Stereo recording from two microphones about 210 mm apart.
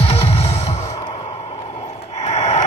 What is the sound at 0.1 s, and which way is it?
Music, 30° left (ahead or behind).